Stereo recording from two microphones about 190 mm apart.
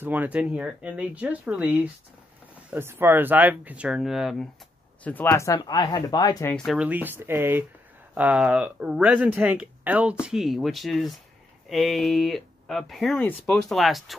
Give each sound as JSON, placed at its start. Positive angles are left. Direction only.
{"t": 0.0, "sound": "speech", "side_deg": -10}
{"t": 5.0, "sound": "speech", "side_deg": 10}
{"t": 6.5, "sound": "speech", "side_deg": 0}